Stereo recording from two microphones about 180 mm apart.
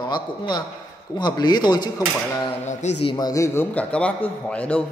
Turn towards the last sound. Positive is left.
turn(degrees=5)  # may be behind; listen again after turning